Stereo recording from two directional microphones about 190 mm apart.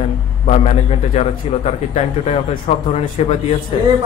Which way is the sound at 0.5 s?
35° left (ahead or behind).